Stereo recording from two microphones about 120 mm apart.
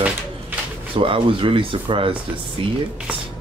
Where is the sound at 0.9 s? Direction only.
45° right (ahead or behind).